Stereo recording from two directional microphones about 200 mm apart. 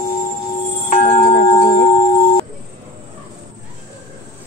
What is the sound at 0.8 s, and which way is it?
Tubular bells, 35° left (ahead or behind).